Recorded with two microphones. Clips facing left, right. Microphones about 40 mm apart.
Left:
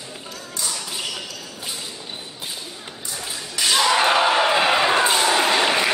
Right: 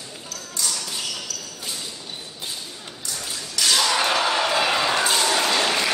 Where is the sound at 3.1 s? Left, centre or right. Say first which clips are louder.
Left 1 dB; centre.